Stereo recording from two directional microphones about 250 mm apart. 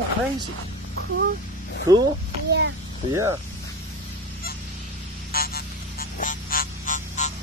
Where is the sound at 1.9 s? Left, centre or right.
Centre.